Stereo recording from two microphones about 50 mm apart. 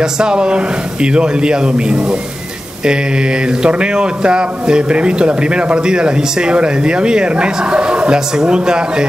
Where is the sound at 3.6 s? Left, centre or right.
Centre.